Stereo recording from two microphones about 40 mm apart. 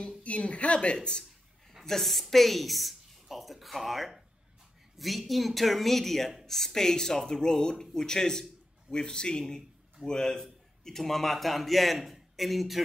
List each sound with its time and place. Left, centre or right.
0.2 s a woman's voice: left
0.9 s speech: centre
1.9 s a woman's voice: centre